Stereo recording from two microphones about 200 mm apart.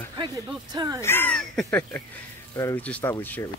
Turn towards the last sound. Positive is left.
turn(degrees=10)  # may be behind; listen again after turning